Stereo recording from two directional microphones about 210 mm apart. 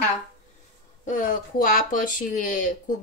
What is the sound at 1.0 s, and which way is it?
A woman's voice, 40° left (ahead or behind).